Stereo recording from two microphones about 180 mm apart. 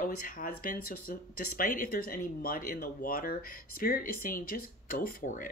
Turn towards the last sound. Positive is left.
turn(degrees=50)  # may be behind; listen again after turning